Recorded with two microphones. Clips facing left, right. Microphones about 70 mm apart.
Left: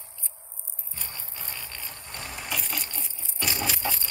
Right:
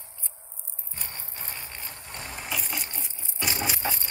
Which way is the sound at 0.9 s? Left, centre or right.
Right.